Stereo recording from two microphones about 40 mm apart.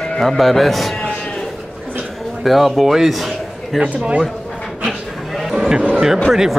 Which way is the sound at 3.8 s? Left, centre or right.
Right.